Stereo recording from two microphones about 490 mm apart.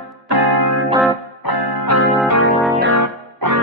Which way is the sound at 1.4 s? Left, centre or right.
Left.